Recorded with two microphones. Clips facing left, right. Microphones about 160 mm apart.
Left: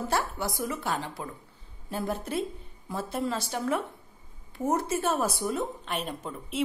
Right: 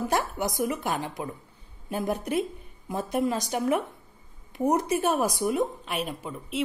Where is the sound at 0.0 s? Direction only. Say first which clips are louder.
Right 3 dB; 15° right (ahead or behind).